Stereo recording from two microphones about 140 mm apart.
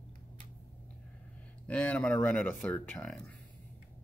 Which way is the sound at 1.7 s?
10° left (ahead or behind).